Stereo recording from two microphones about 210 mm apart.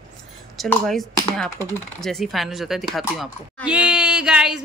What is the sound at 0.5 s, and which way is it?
Speech, 5° left (ahead or behind).